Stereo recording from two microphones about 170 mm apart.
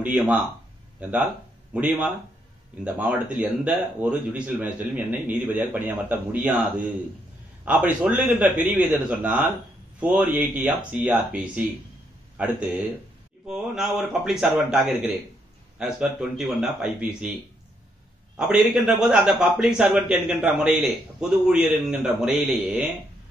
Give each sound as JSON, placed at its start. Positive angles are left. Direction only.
{"t": 0.0, "sound": "a man's voice", "side_deg": -10}
{"t": 18.3, "sound": "a man's voice", "side_deg": -5}